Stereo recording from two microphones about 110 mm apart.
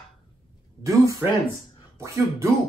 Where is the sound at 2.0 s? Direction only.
25° right (ahead or behind).